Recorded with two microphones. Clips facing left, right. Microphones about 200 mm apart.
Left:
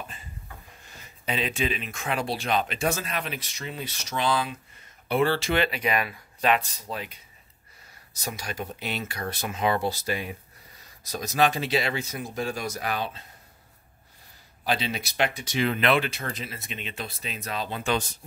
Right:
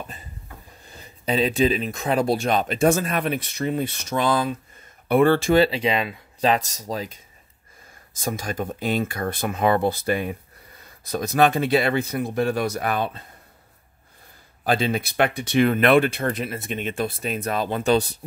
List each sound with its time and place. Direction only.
0.8 s speech: 35° right (ahead or behind); by 5.6 s 50° right (ahead or behind)
5.6 s speech: 30° right (ahead or behind)
6.5 s speech: 40° right (ahead or behind)
8.2 s speech: 50° right (ahead or behind)
14.6 s speech: 50° right (ahead or behind)
17.9 s speech: 35° right (ahead or behind)